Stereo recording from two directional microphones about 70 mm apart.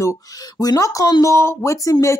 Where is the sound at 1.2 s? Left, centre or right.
Left.